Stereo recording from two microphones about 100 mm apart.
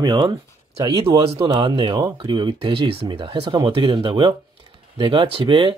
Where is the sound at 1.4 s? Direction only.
50° right (ahead or behind).